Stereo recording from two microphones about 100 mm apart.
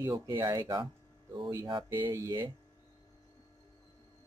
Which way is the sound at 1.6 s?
55° right (ahead or behind).